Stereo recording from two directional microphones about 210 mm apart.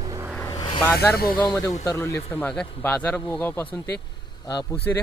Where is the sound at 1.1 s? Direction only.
45° left (ahead or behind).